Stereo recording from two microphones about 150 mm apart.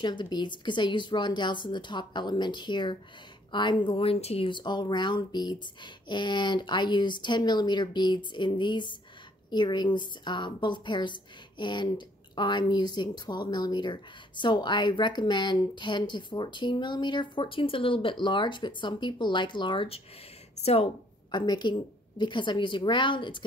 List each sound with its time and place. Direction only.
0.0 s a woman's voice: 30° left (ahead or behind)